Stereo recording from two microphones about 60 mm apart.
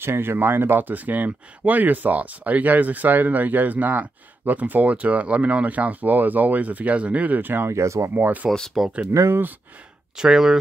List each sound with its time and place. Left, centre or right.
0.0 s speech: right
7.6 s speech: right
8.1 s speech: right
8.8 s speech: centre
9.1 s speech: right
10.1 s speech: centre